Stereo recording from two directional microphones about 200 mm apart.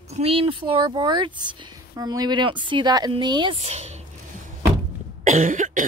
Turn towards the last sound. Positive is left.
turn(degrees=-40)  # may be behind; listen again after turning